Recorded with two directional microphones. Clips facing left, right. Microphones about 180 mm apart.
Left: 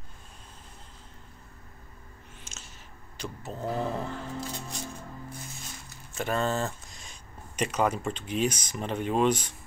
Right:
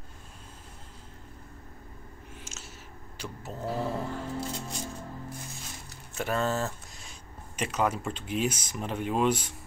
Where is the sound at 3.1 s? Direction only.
5° right (ahead or behind).